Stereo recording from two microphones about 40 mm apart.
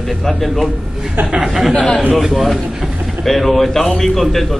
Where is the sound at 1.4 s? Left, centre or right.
Centre.